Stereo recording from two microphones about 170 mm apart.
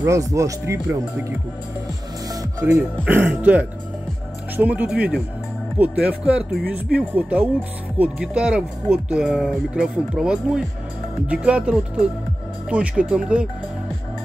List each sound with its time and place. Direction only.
0.0 s speech: 20° right (ahead or behind)
2.2 s speech: 15° right (ahead or behind)